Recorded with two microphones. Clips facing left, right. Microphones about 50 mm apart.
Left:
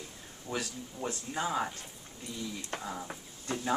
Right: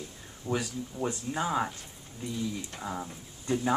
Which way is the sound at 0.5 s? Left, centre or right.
Right.